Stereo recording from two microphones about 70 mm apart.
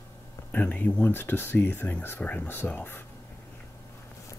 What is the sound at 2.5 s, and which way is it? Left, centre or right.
Speech, left.